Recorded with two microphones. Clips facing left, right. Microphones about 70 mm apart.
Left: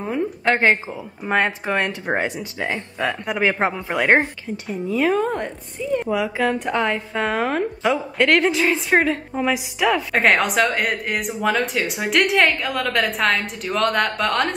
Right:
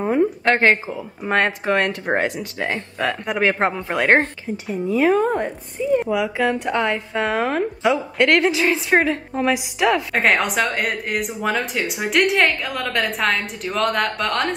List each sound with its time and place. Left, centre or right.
0.0 s a woman's voice: right
0.5 s a woman's voice: centre